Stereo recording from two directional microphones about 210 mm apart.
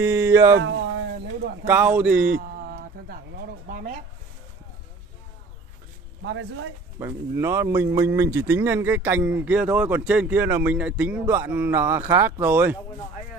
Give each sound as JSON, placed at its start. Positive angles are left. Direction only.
{"t": 0.0, "sound": "speech", "side_deg": -15}
{"t": 0.6, "sound": "a sound", "side_deg": -65}
{"t": 1.7, "sound": "speech", "side_deg": -10}
{"t": 2.2, "sound": "speech", "side_deg": -45}
{"t": 3.6, "sound": "a sound", "side_deg": -40}
{"t": 6.2, "sound": "speech", "side_deg": -60}
{"t": 7.0, "sound": "speech", "side_deg": -10}